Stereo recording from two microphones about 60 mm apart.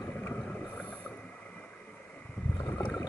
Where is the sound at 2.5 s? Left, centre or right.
Left.